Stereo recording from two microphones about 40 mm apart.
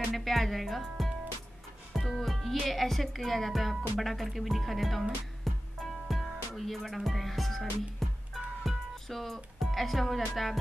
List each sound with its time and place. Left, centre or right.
0.1 s speech: centre
5.5 s music: centre
8.6 s speech: centre